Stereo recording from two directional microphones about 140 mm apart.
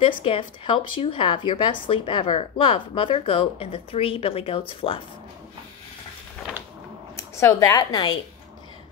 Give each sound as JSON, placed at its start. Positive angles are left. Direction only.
{"t": 0.0, "sound": "speech", "side_deg": 40}
{"t": 7.2, "sound": "speech", "side_deg": 20}